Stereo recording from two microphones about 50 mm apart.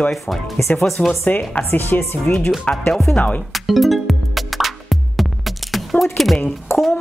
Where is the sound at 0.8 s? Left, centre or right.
Centre.